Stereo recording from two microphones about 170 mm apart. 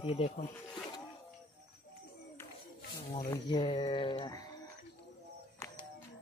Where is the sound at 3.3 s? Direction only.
25° left (ahead or behind).